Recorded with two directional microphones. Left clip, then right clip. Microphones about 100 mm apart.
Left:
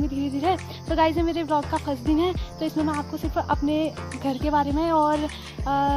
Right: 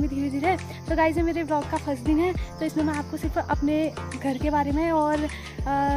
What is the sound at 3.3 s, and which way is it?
Speech, 25° right (ahead or behind).